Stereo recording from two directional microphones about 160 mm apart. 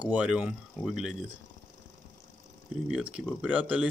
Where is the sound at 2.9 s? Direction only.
5° right (ahead or behind).